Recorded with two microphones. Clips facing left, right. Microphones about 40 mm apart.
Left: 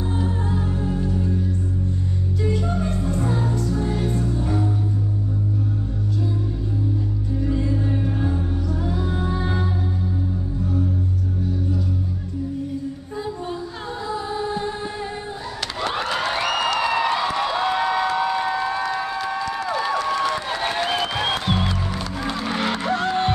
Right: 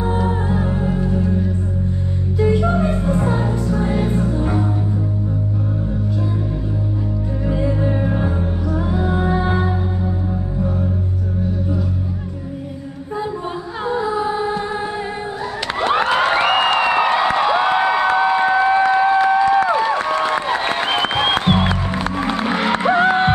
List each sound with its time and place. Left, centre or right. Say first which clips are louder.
0.0 s music: right 6 dB; right
2.4 s music: right 8 dB; right
7.4 s music: right 4 dB; right
13.8 s music: right 9 dB; right
15.8 s a sound: right 8 dB; right